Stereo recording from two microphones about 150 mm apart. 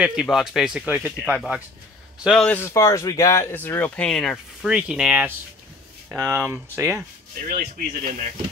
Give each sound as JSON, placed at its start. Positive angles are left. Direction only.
{"t": 0.0, "sound": "speech", "side_deg": -5}
{"t": 2.5, "sound": "speech", "side_deg": 15}
{"t": 7.3, "sound": "speech", "side_deg": -75}